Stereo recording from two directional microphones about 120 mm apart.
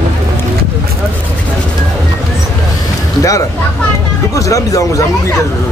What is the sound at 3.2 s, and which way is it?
Speech, 30° left (ahead or behind).